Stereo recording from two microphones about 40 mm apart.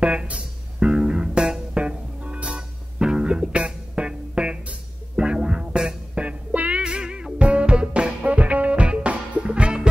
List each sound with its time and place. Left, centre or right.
0.0 s music: right
6.8 s music: right